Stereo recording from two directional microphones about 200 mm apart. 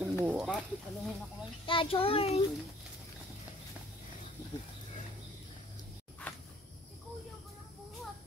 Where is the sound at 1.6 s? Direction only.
25° left (ahead or behind).